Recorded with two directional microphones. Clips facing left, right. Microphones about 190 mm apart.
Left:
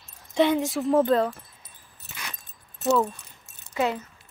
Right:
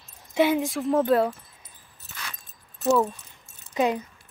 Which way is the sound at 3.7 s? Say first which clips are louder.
Right 2 dB; 15° right (ahead or behind).